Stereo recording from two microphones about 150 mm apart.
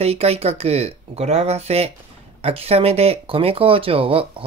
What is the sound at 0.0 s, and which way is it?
Speech, 45° right (ahead or behind).